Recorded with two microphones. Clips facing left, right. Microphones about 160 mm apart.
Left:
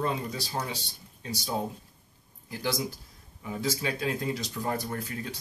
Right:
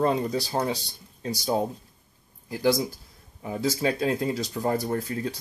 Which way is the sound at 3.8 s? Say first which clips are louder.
Right 6 dB; 35° right (ahead or behind).